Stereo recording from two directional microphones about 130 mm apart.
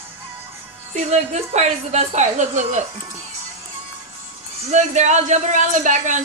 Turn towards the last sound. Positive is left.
turn(degrees=-70)  # may be behind; listen again after turning